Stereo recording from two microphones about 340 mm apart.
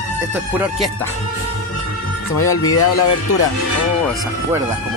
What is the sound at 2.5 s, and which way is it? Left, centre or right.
Speech, left.